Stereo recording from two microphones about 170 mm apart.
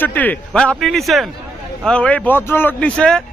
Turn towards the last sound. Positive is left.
turn(degrees=5)  # may be behind; listen again after turning